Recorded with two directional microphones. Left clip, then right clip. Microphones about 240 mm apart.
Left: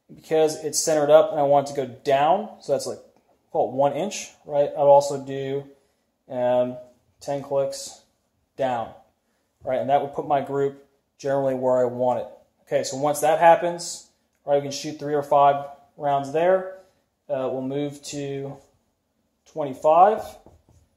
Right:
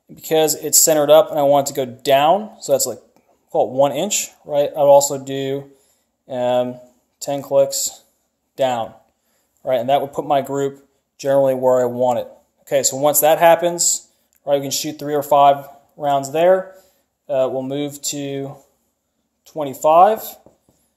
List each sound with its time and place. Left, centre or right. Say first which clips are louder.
0.1 s speech: right 4 dB; right